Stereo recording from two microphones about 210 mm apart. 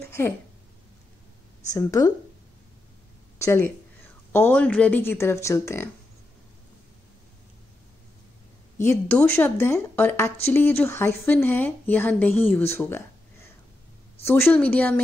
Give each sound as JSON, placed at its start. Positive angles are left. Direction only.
{"t": 0.0, "sound": "a sound", "side_deg": 10}
{"t": 1.7, "sound": "speech", "side_deg": 15}
{"t": 3.3, "sound": "speech", "side_deg": 15}
{"t": 8.7, "sound": "speech", "side_deg": 10}
{"t": 14.2, "sound": "speech", "side_deg": 10}